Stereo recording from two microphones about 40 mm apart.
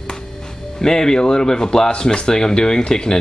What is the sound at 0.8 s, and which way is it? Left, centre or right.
Speech, centre.